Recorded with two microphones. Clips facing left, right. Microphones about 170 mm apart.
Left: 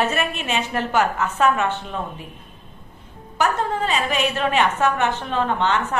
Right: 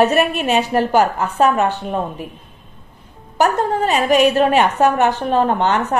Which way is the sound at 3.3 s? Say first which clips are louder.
Right 5 dB; 40° right (ahead or behind).